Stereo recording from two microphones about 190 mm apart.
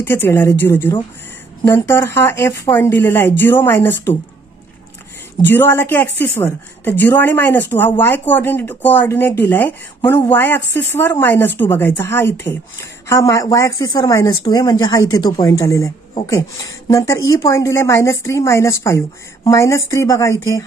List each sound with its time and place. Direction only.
0.0 s speech: 10° left (ahead or behind)
5.4 s a woman's voice: 10° left (ahead or behind)